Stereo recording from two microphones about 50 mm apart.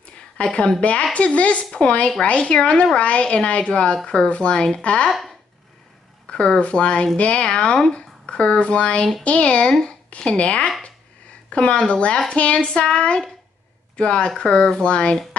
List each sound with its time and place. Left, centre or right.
0.4 s a woman's voice: centre
6.3 s a woman's voice: centre